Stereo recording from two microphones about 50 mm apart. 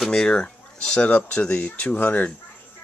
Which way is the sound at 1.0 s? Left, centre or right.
Centre.